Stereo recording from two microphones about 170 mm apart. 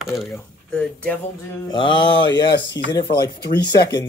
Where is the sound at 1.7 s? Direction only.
25° left (ahead or behind).